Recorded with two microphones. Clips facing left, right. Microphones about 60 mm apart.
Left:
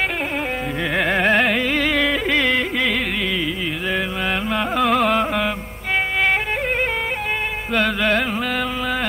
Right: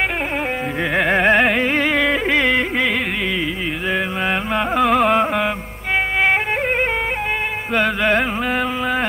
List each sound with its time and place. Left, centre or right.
0.9 s carnatic music: centre
1.6 s music: right
7.7 s music: centre